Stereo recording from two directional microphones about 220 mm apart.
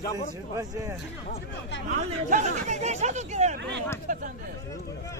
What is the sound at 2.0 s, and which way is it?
Speech, 35° right (ahead or behind).